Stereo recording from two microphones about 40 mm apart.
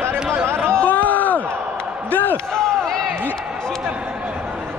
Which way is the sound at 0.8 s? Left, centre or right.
Left.